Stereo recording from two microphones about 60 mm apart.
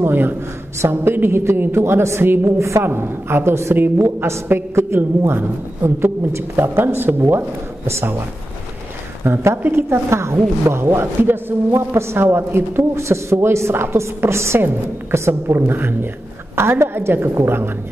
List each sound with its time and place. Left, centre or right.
0.0 s a man's voice: right
2.4 s a woman's voice: right
2.8 s a man's voice: right
9.2 s speech: right
10.9 s a man's voice: right